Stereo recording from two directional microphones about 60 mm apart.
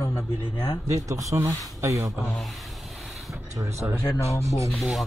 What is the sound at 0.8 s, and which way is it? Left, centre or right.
Speech, right.